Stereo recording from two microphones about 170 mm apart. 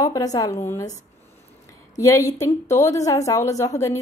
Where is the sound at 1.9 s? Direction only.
15° left (ahead or behind).